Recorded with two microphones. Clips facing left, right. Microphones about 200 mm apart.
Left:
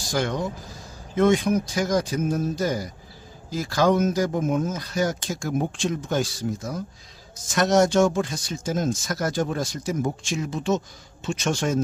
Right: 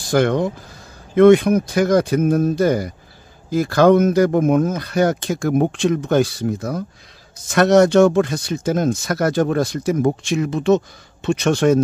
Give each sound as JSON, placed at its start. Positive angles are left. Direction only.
{"t": 0.1, "sound": "speech", "side_deg": -60}